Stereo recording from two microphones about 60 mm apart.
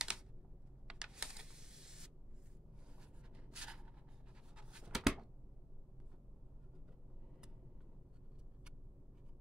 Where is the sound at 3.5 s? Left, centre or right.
Centre.